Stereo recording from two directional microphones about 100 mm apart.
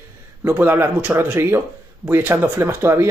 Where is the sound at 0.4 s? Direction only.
20° right (ahead or behind).